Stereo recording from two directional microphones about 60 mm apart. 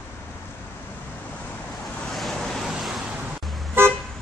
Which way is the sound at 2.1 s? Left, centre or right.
Centre.